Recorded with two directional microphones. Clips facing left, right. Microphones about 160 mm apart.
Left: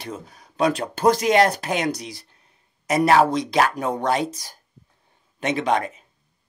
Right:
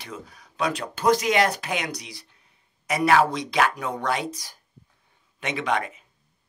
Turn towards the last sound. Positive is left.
turn(degrees=40)  # may be behind; listen again after turning